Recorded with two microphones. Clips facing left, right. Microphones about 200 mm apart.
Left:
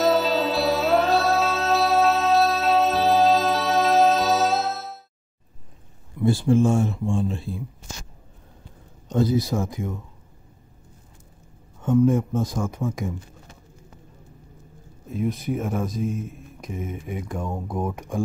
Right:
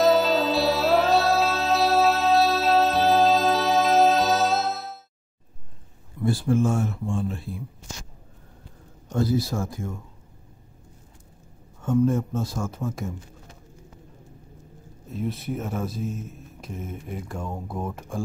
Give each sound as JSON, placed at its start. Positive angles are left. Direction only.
{"t": 0.0, "sound": "music", "side_deg": 0}
{"t": 6.2, "sound": "speech", "side_deg": 25}
{"t": 9.1, "sound": "speech", "side_deg": 20}
{"t": 11.8, "sound": "speech", "side_deg": 15}
{"t": 15.1, "sound": "a man's voice", "side_deg": 0}
{"t": 17.5, "sound": "speech", "side_deg": 15}